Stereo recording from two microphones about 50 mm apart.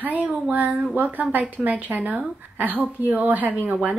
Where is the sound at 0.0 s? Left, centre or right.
Right.